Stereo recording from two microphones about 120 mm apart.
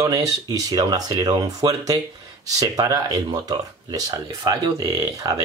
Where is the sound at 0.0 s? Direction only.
30° right (ahead or behind).